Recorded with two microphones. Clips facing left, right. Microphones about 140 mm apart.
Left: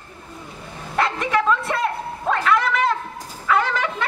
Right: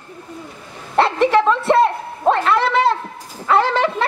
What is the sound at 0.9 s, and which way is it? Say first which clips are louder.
Bow-wow: right 7 dB; 30° right (ahead or behind).